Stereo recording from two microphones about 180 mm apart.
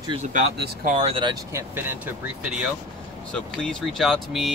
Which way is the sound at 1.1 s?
20° right (ahead or behind).